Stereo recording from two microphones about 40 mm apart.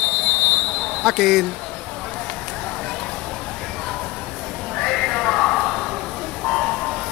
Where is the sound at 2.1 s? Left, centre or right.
Left.